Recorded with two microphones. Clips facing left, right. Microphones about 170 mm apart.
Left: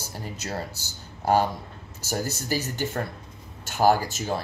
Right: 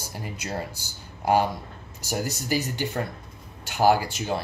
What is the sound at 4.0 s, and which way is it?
Speech, 45° left (ahead or behind).